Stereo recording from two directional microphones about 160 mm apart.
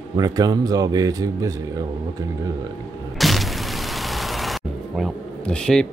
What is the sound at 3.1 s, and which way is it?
Music, centre (ahead or behind).